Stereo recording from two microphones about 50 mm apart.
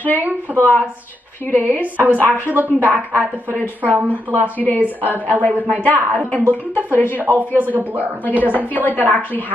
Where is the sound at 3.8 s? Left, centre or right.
Right.